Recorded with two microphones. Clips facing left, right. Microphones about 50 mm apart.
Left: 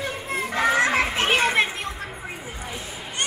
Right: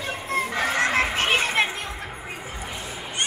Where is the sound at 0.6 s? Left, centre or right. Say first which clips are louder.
Left 4 dB; left.